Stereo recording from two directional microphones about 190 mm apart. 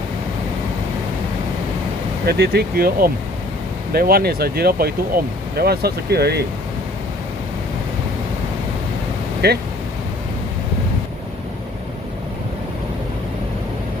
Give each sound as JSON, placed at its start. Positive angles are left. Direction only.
{"t": 2.2, "sound": "speech", "side_deg": -60}
{"t": 9.4, "sound": "speech", "side_deg": -55}